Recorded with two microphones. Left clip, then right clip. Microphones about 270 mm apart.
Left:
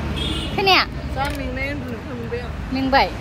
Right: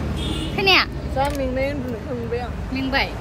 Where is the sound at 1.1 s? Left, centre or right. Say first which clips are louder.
Right 4 dB; right.